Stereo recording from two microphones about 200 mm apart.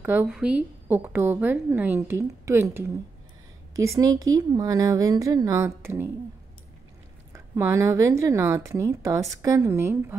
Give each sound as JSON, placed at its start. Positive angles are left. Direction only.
{"t": 0.0, "sound": "a woman's voice", "side_deg": -10}
{"t": 7.3, "sound": "a woman's voice", "side_deg": -15}